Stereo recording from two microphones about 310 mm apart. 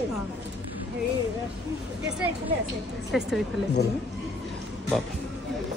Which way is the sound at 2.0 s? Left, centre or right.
Centre.